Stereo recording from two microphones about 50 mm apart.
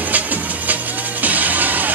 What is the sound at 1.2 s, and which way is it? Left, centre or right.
Music, right.